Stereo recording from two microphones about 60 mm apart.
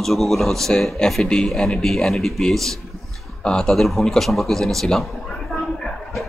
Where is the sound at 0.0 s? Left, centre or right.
Centre.